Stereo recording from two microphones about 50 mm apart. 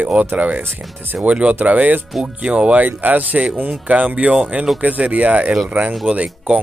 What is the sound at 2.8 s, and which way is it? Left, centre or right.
Speech, right.